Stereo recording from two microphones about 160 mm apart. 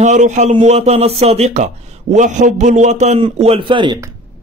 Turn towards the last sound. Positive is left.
turn(degrees=-30)  # may be behind; listen again after turning